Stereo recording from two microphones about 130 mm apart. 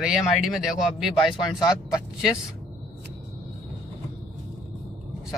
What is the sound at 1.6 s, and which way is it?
Speech, 30° left (ahead or behind).